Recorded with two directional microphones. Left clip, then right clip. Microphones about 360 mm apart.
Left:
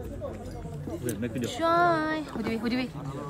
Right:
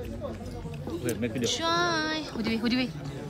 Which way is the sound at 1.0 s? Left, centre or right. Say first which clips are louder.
Right 4 dB; centre.